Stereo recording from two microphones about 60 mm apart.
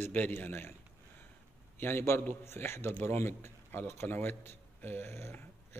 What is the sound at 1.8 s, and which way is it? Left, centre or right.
A man's voice, left.